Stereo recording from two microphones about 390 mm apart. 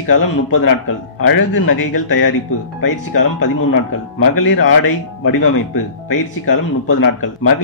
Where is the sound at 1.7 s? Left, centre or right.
Left.